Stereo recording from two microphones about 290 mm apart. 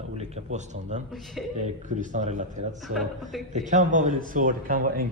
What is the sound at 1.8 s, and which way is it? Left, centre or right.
Speech, right.